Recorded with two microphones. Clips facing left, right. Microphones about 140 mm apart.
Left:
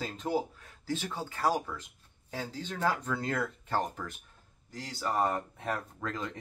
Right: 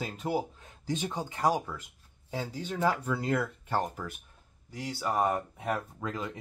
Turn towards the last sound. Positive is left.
turn(degrees=-10)  # may be behind; listen again after turning